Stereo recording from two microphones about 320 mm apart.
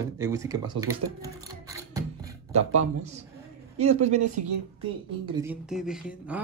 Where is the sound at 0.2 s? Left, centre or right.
Centre.